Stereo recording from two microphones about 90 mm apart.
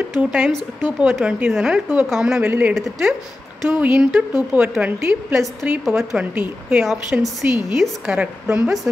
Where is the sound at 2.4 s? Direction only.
20° right (ahead or behind).